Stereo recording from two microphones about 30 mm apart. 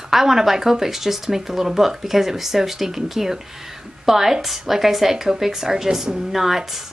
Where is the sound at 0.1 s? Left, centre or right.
Centre.